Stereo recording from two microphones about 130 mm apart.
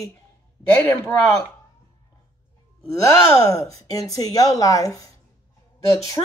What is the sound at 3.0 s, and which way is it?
Speech, 20° left (ahead or behind).